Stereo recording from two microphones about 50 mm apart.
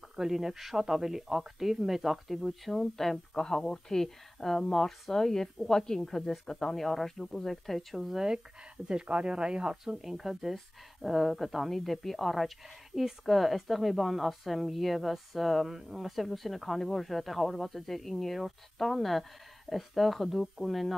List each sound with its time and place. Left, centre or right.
0.1 s speech: centre
8.8 s speech: centre